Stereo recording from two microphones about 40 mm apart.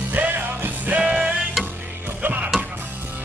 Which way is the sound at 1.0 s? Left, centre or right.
Right.